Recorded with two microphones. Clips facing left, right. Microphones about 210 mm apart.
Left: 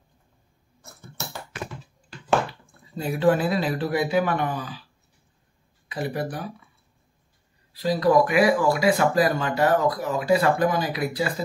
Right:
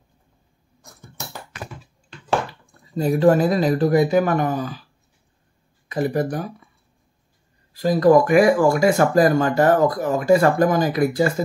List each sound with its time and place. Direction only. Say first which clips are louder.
2.0 s a sound: even; centre (ahead or behind)
3.0 s speech: right 5 dB; 40° right (ahead or behind)
5.9 s speech: right 7 dB; 45° right (ahead or behind)
7.7 s speech: right 5 dB; 45° right (ahead or behind)